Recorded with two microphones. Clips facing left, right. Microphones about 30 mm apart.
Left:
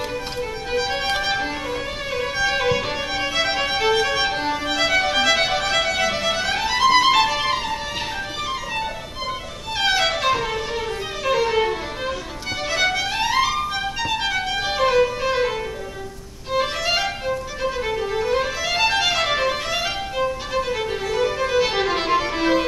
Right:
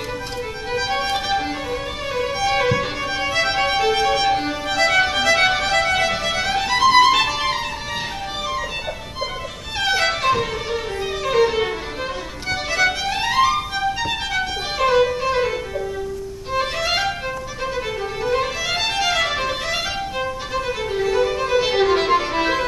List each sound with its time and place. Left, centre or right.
0.7 s music: centre
2.1 s violin: centre
3.3 s music: centre
4.0 s violin: centre
4.8 s music: centre
10.2 s music: centre
11.3 s violin: centre
12.4 s music: centre
12.9 s music: centre
14.3 s violin: centre
16.5 s violin: centre
21.1 s violin: centre
22.3 s music: centre